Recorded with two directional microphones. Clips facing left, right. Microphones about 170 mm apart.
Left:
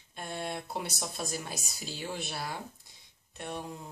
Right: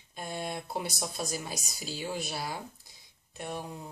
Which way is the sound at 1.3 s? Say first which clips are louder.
Right 1 dB; centre (ahead or behind).